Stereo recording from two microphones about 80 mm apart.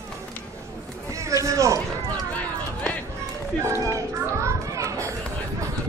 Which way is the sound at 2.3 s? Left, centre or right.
Centre.